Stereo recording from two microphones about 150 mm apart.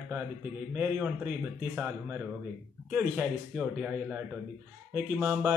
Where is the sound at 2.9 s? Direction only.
10° right (ahead or behind).